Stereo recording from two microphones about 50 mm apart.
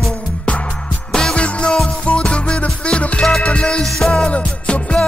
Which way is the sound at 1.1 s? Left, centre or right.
Centre.